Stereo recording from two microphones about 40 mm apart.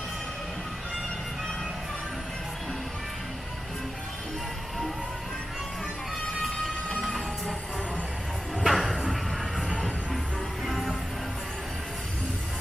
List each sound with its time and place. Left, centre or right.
6.5 s music: centre
7.0 s music: centre
8.6 s music: centre
10.6 s music: centre